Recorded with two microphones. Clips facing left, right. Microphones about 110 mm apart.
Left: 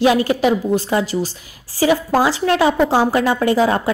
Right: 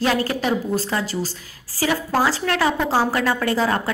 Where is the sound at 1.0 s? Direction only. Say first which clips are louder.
Left 5 dB; 35° right (ahead or behind).